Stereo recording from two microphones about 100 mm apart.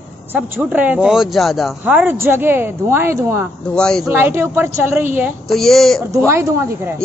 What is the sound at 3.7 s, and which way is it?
Speech, 5° left (ahead or behind).